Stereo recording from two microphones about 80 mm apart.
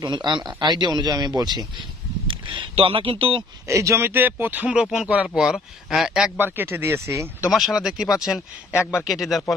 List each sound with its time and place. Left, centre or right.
0.0 s speech: right
2.2 s speech: right
3.6 s speech: right
4.1 s speech: right; by 6.3 s centre
6.3 s speech: right
7.5 s speech: centre